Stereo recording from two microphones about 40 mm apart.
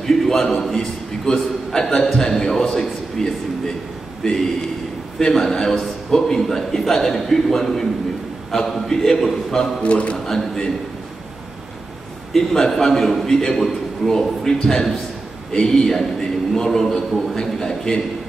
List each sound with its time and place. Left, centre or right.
0.0 s a sound: centre
0.6 s a man's voice: centre
9.8 s speech: left
10.1 s a man's voice: centre
12.4 s a man's voice: centre